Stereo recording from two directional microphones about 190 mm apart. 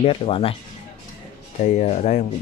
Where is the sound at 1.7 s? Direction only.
35° left (ahead or behind).